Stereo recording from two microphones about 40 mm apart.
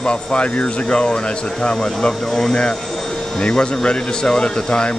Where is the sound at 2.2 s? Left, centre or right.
Centre.